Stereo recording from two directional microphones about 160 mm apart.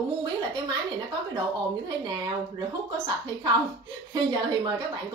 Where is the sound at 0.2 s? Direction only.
25° right (ahead or behind).